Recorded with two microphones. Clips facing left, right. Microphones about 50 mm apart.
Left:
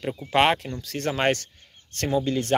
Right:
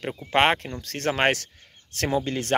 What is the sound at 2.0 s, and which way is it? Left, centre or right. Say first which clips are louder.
Speech: left 1 dB; right.